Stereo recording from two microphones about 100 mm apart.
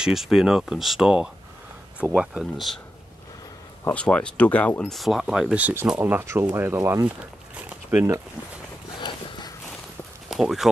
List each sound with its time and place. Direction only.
0.0 s speech: 5° right (ahead or behind)
3.9 s speech: 10° left (ahead or behind)
4.8 s speech: centre (ahead or behind)
5.6 s speech: 15° right (ahead or behind)
7.2 s a sound: 15° right (ahead or behind)
10.2 s speech: 5° right (ahead or behind)